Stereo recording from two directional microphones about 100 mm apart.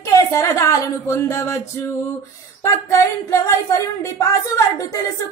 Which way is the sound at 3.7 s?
35° left (ahead or behind).